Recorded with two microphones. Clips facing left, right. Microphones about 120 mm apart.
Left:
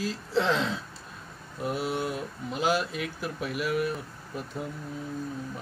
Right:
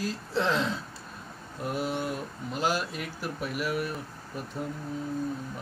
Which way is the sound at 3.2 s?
45° right (ahead or behind).